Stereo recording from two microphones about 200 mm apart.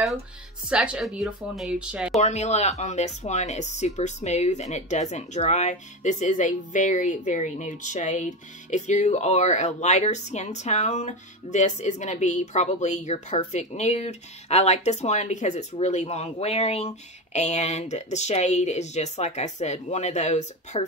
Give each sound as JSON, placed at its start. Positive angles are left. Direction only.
{"t": 0.7, "sound": "a woman's voice", "side_deg": -5}
{"t": 2.1, "sound": "speech", "side_deg": 35}